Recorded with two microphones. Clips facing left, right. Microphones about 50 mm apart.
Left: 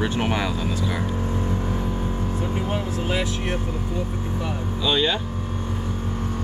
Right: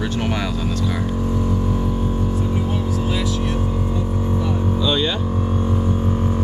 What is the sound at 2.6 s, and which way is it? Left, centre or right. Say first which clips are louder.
Speech: right 3 dB; left.